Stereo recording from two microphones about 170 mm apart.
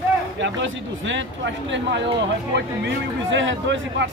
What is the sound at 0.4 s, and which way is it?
Speech, 90° right.